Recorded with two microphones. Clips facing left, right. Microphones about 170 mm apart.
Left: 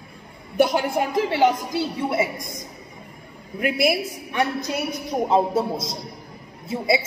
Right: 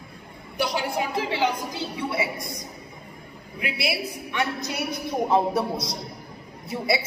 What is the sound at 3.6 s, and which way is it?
Speech, 50° left (ahead or behind).